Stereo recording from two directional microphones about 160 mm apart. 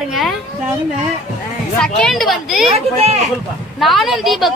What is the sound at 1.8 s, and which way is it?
Speech, 5° left (ahead or behind).